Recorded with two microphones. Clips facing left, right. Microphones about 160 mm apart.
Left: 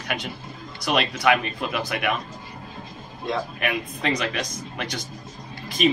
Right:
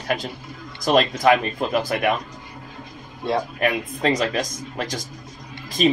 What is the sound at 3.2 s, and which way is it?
Speech, 35° right (ahead or behind).